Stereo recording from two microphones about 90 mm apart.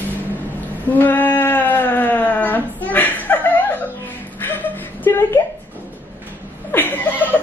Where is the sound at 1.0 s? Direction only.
20° left (ahead or behind).